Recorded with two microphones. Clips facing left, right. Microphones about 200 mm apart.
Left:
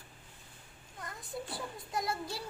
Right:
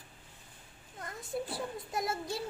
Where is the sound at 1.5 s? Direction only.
25° right (ahead or behind).